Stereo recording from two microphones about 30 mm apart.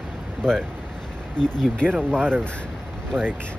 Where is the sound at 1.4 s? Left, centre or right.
Left.